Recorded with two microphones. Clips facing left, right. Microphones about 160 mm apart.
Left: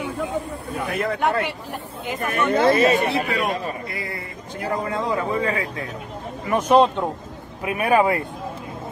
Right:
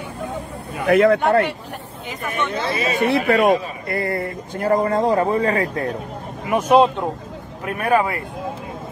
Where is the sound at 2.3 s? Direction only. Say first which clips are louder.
Left 6 dB; 50° left (ahead or behind).